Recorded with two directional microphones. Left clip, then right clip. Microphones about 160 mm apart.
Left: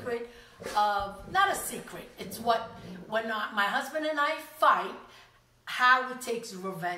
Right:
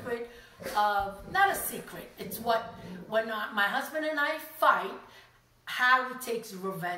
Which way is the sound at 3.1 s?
5° left (ahead or behind).